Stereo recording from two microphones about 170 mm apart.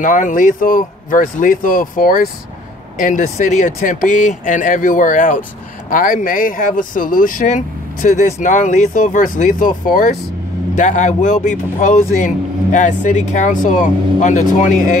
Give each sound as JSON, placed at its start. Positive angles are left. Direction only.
{"t": 0.0, "sound": "speech", "side_deg": 50}